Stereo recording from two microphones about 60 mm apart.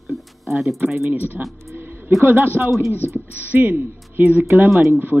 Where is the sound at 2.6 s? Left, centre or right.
Right.